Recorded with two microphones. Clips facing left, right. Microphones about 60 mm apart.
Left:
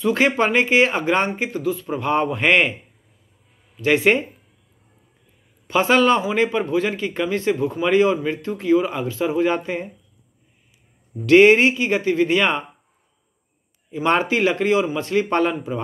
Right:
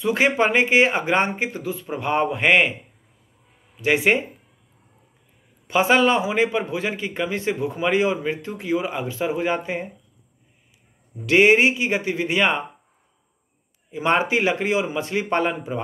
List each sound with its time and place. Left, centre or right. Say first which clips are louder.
0.0 s speech: left 1 dB; centre
3.8 s speech: left 2 dB; centre
5.7 s speech: left 1 dB; centre
11.2 s speech: left 3 dB; centre
13.9 s speech: left 1 dB; centre